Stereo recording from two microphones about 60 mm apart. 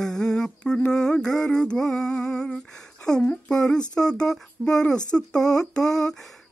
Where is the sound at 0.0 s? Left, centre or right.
Centre.